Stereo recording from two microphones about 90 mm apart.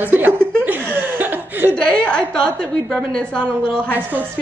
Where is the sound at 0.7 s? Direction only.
20° right (ahead or behind).